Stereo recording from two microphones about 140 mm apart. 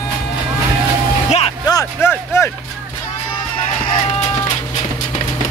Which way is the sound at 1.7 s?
20° left (ahead or behind).